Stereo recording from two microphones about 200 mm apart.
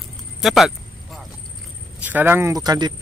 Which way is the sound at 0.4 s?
Centre (ahead or behind).